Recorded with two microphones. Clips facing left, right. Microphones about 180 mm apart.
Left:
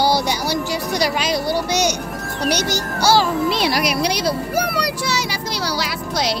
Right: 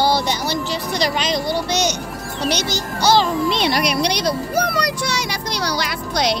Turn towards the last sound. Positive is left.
turn(degrees=5)  # may be behind; listen again after turning